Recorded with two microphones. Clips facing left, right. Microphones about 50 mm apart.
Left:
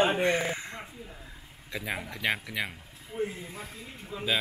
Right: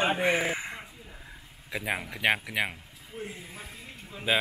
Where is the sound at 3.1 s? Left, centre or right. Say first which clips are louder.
Left 7 dB; centre.